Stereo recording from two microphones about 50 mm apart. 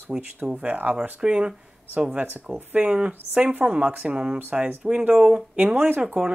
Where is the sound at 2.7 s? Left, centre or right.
Right.